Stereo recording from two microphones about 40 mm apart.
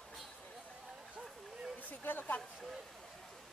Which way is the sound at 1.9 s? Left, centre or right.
Left.